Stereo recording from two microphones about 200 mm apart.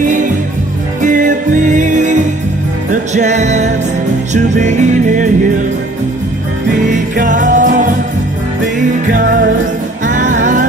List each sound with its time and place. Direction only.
1.0 s music: 40° right (ahead or behind)
6.9 s music: 40° right (ahead or behind)
9.1 s music: 45° right (ahead or behind)